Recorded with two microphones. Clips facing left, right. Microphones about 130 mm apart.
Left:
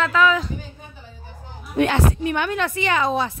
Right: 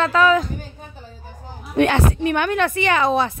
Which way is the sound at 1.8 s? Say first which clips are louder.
Right 2 dB; 65° right (ahead or behind).